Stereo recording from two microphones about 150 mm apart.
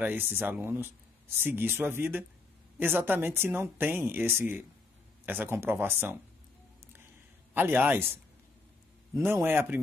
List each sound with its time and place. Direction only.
0.0 s speech: 15° right (ahead or behind)
7.5 s speech: 10° right (ahead or behind)
9.1 s speech: 15° right (ahead or behind)